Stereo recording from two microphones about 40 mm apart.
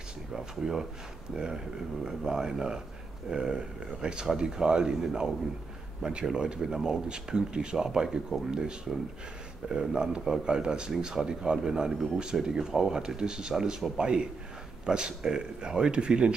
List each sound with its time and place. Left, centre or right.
0.3 s speech: centre
13.9 s speech: right